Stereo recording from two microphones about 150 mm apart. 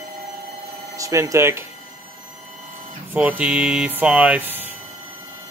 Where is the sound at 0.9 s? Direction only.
20° right (ahead or behind).